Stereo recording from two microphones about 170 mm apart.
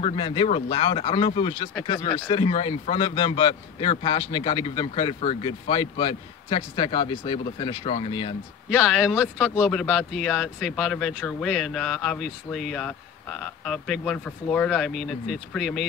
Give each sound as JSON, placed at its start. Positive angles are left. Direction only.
{"t": 0.0, "sound": "a man's voice", "side_deg": 30}
{"t": 8.9, "sound": "speech", "side_deg": -5}